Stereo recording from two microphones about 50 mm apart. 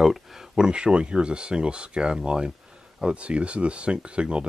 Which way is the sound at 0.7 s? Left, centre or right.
Centre.